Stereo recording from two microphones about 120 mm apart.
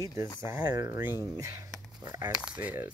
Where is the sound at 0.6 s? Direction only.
30° right (ahead or behind).